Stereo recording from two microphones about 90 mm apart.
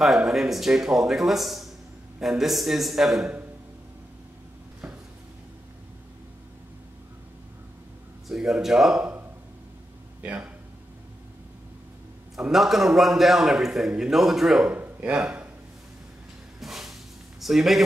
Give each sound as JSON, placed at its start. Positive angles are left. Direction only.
{"t": 0.0, "sound": "a man's voice", "side_deg": 0}
{"t": 8.3, "sound": "a man's voice", "side_deg": -5}
{"t": 10.2, "sound": "speech", "side_deg": -15}
{"t": 12.4, "sound": "a man's voice", "side_deg": -5}
{"t": 14.7, "sound": "a sound", "side_deg": -15}
{"t": 15.1, "sound": "a man's voice", "side_deg": -5}
{"t": 16.5, "sound": "music", "side_deg": -5}
{"t": 17.4, "sound": "speech", "side_deg": 0}